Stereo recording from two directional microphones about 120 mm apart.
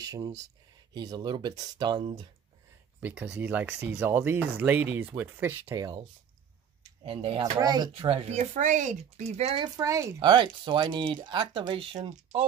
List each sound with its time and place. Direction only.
0.0 s speech: 30° right (ahead or behind); by 2.2 s 45° right (ahead or behind)
3.0 s speech: 10° right (ahead or behind)
7.0 s speech: 50° right (ahead or behind)
7.5 s speech: 35° right (ahead or behind)
7.9 s speech: 50° right (ahead or behind)
9.6 s speech: 30° right (ahead or behind)
10.2 s speech: 40° right (ahead or behind)